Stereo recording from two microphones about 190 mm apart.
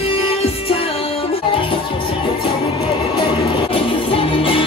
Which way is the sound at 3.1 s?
25° left (ahead or behind).